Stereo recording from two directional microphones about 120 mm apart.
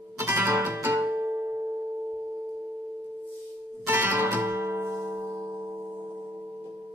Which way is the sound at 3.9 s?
15° right (ahead or behind).